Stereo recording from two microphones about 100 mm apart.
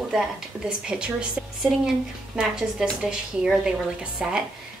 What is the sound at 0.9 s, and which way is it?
A woman's voice, 10° right (ahead or behind).